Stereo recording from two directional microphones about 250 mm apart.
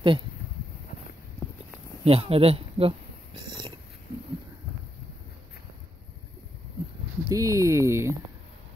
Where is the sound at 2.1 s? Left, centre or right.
Right.